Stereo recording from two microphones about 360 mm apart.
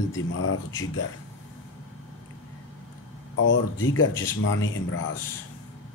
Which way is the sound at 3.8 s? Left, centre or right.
Left.